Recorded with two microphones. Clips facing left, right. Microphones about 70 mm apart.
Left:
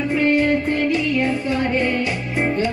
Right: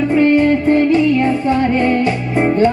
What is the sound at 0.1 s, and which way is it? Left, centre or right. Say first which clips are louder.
Music: right 5 dB; right.